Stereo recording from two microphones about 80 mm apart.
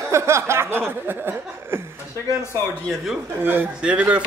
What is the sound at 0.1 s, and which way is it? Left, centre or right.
Chuckle, right.